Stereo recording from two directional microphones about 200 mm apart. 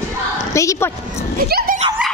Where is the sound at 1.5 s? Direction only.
50° right (ahead or behind).